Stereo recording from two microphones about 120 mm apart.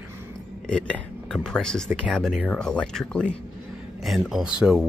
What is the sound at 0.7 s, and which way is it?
Speech, 5° left (ahead or behind).